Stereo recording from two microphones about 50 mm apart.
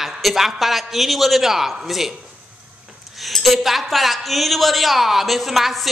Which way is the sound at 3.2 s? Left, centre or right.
Centre.